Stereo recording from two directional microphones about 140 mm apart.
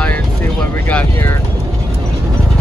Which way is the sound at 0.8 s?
15° left (ahead or behind).